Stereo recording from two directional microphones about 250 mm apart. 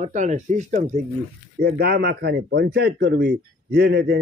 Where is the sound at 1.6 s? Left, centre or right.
Right.